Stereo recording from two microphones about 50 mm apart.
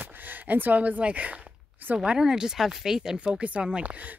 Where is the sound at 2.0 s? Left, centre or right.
Centre.